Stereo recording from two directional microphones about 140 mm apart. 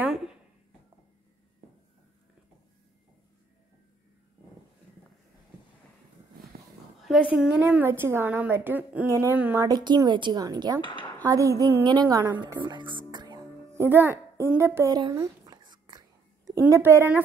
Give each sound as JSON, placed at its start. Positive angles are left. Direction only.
{"t": 7.1, "sound": "a woman's voice", "side_deg": -5}
{"t": 9.7, "sound": "speech", "side_deg": -30}
{"t": 10.8, "sound": "speech", "side_deg": 35}
{"t": 11.2, "sound": "speech", "side_deg": -25}
{"t": 12.4, "sound": "music", "side_deg": -35}
{"t": 13.7, "sound": "a woman's voice", "side_deg": -15}
{"t": 15.0, "sound": "whispering", "side_deg": -25}
{"t": 16.4, "sound": "a woman's voice", "side_deg": -20}